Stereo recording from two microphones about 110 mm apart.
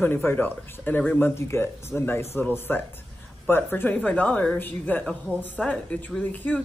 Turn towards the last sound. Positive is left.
turn(degrees=15)  # may be behind; listen again after turning